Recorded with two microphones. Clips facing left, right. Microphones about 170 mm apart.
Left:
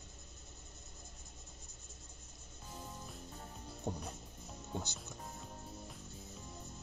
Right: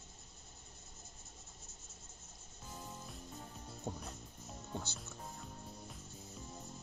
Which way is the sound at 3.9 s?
15° left (ahead or behind).